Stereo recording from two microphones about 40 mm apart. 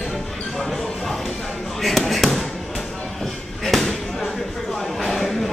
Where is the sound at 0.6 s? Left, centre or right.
Centre.